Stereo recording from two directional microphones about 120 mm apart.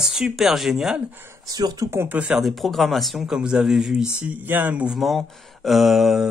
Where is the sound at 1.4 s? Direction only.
35° right (ahead or behind); by 2.4 s 15° right (ahead or behind).